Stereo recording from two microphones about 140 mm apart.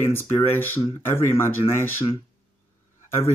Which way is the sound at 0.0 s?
15° left (ahead or behind).